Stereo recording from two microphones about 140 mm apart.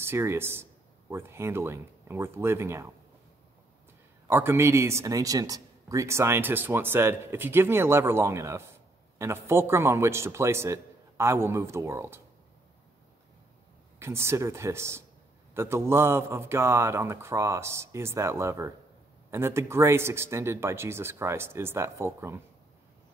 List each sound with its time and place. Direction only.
0.0 s speech: 15° right (ahead or behind)
4.3 s a man's voice: 15° right (ahead or behind)
13.9 s a man's voice: 20° right (ahead or behind)